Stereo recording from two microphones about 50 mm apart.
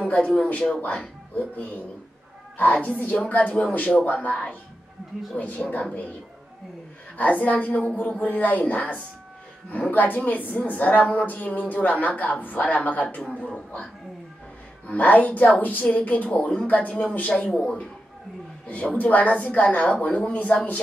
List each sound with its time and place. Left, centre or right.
0.0 s a woman's voice: left
5.6 s a woman's voice: left
7.2 s a woman's voice: left
14.9 s a woman's voice: left
16.3 s a woman's voice: centre
16.6 s a woman's voice: left
17.5 s a man's voice: centre
18.7 s a woman's voice: left